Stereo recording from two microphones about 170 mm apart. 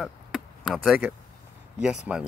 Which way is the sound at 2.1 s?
5° right (ahead or behind).